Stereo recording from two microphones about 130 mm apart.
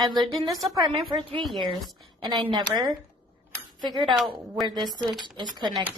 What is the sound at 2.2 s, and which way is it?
Speech, 35° right (ahead or behind).